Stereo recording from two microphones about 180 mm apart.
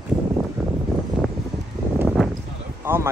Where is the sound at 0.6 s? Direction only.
Centre (ahead or behind).